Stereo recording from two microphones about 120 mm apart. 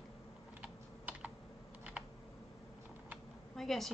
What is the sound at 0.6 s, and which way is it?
Typing, 10° right (ahead or behind).